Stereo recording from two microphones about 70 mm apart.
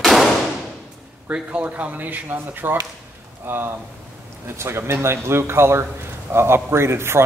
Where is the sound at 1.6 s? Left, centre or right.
Right.